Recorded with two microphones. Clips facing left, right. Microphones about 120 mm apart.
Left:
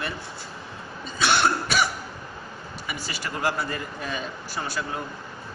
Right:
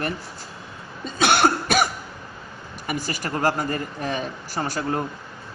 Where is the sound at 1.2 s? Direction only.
55° right (ahead or behind).